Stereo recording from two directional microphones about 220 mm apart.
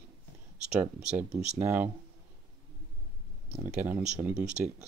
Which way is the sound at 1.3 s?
10° right (ahead or behind).